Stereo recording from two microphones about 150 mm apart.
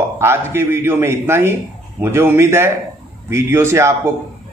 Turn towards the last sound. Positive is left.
turn(degrees=-20)  # may be behind; listen again after turning